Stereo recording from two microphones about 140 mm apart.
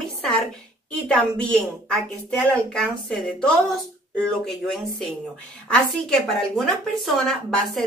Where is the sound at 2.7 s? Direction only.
Centre (ahead or behind).